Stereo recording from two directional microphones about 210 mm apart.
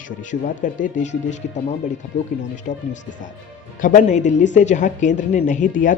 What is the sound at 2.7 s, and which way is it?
Speech, 40° left (ahead or behind).